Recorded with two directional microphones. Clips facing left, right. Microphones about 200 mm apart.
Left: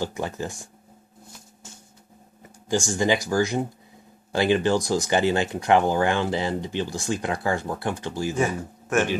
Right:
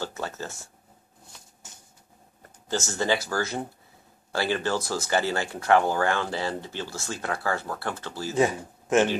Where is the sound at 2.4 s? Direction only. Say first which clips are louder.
Left 5 dB; 15° left (ahead or behind).